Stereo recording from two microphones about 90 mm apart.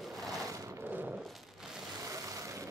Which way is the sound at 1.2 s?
Centre (ahead or behind).